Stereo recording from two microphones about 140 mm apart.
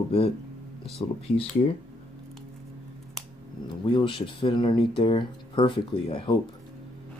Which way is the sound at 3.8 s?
35° left (ahead or behind).